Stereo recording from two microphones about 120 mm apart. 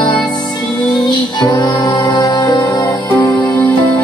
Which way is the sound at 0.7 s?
35° left (ahead or behind).